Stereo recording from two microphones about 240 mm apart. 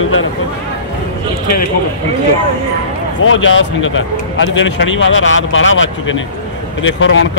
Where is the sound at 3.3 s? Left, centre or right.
Left.